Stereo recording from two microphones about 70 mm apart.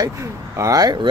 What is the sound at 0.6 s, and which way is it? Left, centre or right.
Speech, right.